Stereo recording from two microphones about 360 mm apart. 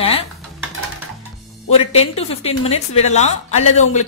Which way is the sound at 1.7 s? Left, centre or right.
Centre.